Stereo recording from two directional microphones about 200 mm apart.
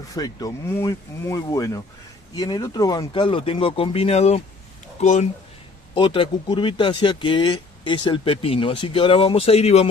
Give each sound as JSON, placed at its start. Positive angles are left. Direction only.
{"t": 0.1, "sound": "speech", "side_deg": 20}